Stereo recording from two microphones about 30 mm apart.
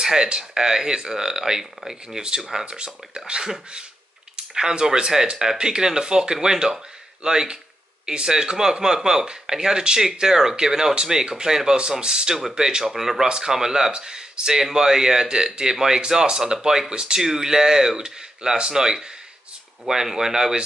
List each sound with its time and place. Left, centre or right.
0.0 s speech: right
2.7 s speech: right
4.6 s speech: right
12.9 s speech: centre